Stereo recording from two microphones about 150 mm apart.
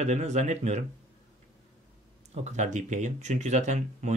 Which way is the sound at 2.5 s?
50° right (ahead or behind).